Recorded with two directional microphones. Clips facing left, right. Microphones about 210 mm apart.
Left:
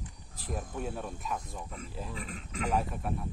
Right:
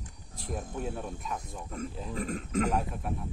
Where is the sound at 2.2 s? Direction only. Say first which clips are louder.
Right 12 dB; 45° right (ahead or behind).